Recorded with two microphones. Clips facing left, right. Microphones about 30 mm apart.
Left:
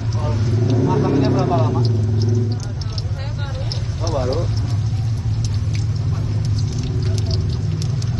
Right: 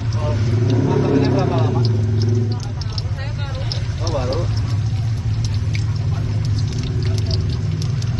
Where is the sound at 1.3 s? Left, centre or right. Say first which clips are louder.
Left 1 dB; right.